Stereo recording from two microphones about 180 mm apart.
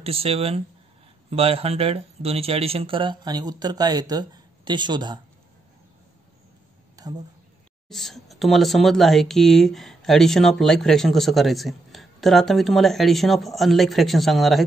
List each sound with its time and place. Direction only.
0.0 s speech: 35° right (ahead or behind)
7.0 s a sound: 20° right (ahead or behind)
7.9 s speech: centre (ahead or behind)